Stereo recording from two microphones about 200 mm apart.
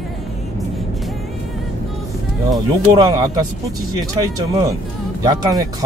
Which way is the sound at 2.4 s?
20° right (ahead or behind).